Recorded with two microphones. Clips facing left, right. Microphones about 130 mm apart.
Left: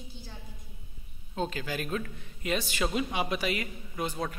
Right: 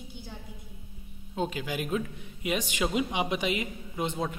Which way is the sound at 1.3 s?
15° right (ahead or behind).